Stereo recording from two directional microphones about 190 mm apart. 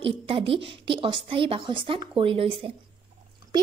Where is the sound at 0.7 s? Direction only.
25° right (ahead or behind).